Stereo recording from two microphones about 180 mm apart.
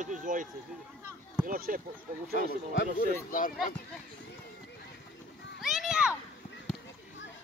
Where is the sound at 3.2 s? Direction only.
50° left (ahead or behind).